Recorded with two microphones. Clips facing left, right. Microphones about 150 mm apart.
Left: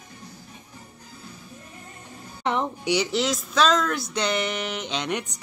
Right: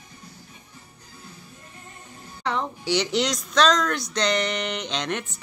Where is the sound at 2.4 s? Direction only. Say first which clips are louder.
Left 2 dB; 20° left (ahead or behind).